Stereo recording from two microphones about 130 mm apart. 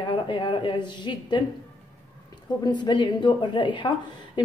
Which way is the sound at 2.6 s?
35° left (ahead or behind).